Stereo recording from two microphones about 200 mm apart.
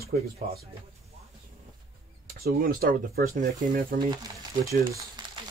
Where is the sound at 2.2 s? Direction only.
45° right (ahead or behind).